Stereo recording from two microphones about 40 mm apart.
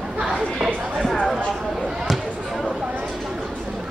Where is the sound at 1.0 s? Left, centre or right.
Centre.